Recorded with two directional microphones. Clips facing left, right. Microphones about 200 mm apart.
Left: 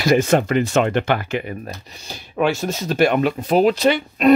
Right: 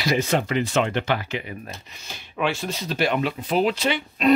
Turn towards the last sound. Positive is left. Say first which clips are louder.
# left 6 dB
turn(degrees=40)  # may be behind; listen again after turning